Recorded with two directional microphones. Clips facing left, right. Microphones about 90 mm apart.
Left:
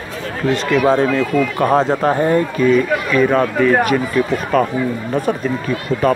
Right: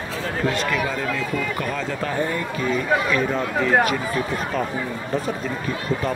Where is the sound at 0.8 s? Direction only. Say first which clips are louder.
Left 11 dB; 75° left (ahead or behind).